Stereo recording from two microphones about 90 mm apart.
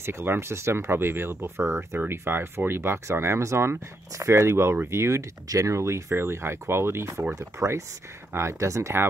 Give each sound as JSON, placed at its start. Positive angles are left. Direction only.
{"t": 0.0, "sound": "speech", "side_deg": -25}